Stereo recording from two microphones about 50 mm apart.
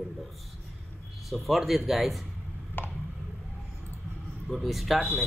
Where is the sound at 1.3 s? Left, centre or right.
Centre.